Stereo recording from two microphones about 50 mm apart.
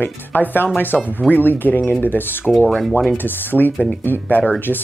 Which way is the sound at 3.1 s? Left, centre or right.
Left.